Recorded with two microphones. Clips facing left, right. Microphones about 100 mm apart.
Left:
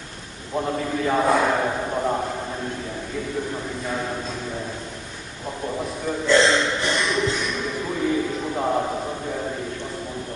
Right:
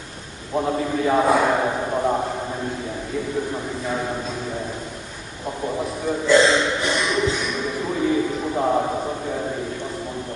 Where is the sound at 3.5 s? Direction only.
5° right (ahead or behind).